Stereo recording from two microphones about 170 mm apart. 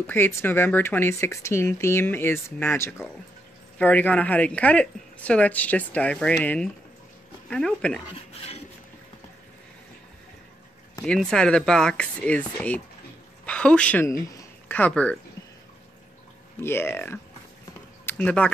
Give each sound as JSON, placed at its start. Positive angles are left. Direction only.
{"t": 0.0, "sound": "speech", "side_deg": 10}
{"t": 8.4, "sound": "a sound", "side_deg": 35}
{"t": 11.1, "sound": "speech", "side_deg": 5}
{"t": 16.6, "sound": "speech", "side_deg": 15}